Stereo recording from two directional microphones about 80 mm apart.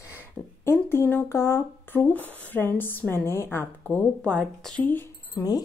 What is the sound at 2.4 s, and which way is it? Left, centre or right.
A woman's voice, left.